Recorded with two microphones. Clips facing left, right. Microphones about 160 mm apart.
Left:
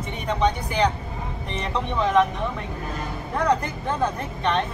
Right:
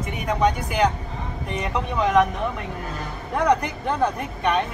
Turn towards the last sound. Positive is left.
turn(degrees=-15)  # may be behind; listen again after turning